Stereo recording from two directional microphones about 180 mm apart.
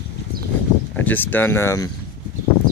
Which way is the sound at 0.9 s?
10° left (ahead or behind).